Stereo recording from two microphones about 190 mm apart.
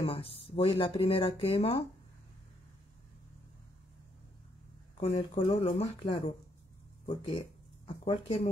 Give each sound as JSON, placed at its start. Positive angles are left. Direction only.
{"t": 0.0, "sound": "speech", "side_deg": 30}
{"t": 5.1, "sound": "speech", "side_deg": 25}